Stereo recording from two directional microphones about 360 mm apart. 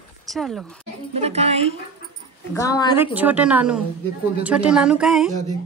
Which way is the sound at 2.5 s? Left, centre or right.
Centre.